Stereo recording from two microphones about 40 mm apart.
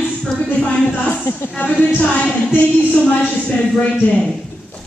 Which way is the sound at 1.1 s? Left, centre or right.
Left.